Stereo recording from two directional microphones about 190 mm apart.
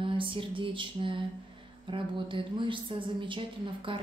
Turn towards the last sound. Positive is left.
turn(degrees=-25)  # may be behind; listen again after turning